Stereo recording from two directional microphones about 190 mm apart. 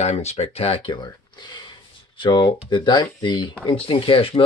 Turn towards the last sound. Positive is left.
turn(degrees=30)  # may be behind; listen again after turning